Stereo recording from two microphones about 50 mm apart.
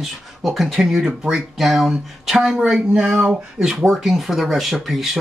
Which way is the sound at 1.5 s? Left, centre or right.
Centre.